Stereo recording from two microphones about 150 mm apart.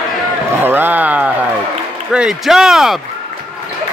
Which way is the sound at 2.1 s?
5° right (ahead or behind).